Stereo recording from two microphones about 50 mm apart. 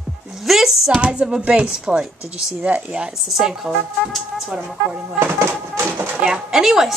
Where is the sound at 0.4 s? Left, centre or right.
Centre.